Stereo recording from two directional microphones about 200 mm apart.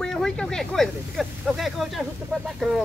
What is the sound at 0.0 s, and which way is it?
Speech, centre (ahead or behind).